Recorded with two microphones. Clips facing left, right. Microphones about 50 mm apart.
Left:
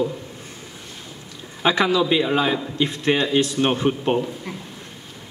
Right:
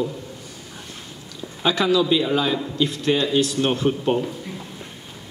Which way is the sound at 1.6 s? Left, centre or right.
Left.